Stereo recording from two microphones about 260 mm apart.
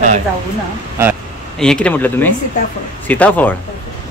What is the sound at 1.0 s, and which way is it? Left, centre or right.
A man's voice, centre.